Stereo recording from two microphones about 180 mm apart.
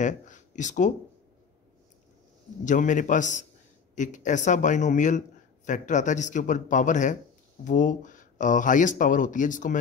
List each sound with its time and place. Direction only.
0.0 s speech: 45° left (ahead or behind)
2.6 s speech: 45° left (ahead or behind)